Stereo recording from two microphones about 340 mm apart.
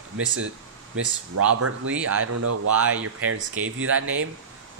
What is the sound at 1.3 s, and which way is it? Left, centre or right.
Speech, right.